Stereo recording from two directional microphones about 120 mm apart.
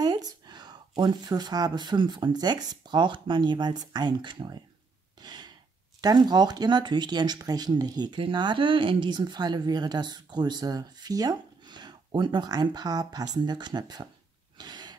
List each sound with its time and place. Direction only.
0.0 s speech: 35° right (ahead or behind)
5.2 s gasp: 35° right (ahead or behind)
5.9 s speech: 35° right (ahead or behind)
14.6 s a sound: 35° right (ahead or behind)